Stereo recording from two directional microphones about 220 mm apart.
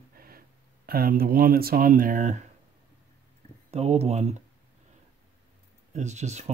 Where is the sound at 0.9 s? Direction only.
40° right (ahead or behind).